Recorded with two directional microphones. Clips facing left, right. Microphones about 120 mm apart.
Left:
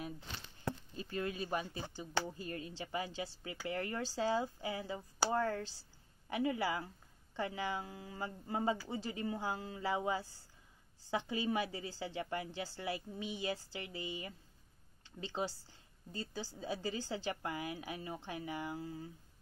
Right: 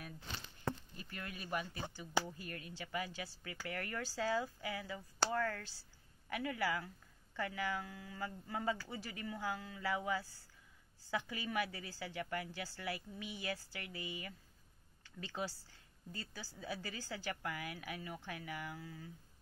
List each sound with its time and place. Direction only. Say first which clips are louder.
0.9 s a woman's voice: left 9 dB; 25° left (ahead or behind)